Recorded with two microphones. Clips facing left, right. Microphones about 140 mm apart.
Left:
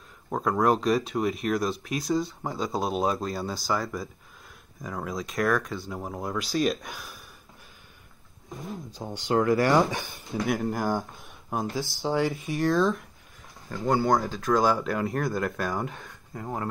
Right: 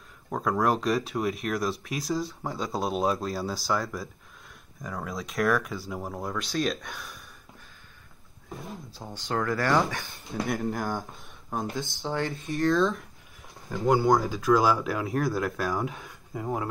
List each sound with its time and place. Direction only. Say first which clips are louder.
0.3 s speech: left 2 dB; centre (ahead or behind)
8.9 s speech: left 6 dB; 15° left (ahead or behind)
10.4 s speech: left 2 dB; centre (ahead or behind)
12.0 s speech: left 5 dB; 10° left (ahead or behind)
12.4 s speech: right 3 dB; centre (ahead or behind)